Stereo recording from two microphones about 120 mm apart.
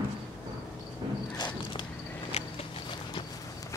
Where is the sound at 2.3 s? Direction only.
65° left (ahead or behind).